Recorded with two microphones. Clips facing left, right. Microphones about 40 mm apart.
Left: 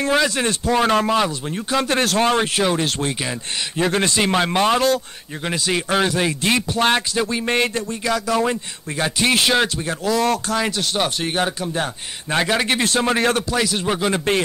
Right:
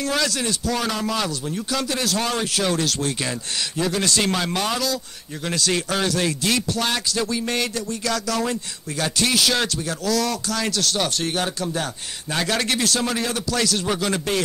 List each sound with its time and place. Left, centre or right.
0.0 s speech: left
5.4 s speech: left